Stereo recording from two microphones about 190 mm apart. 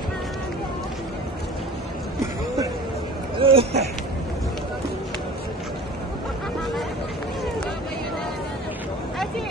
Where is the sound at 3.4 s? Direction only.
30° right (ahead or behind).